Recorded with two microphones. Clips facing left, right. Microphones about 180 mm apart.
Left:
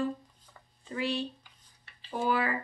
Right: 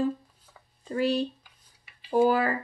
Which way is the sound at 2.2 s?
40° right (ahead or behind).